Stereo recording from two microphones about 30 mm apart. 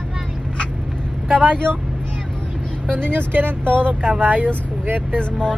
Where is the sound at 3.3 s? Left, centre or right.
Right.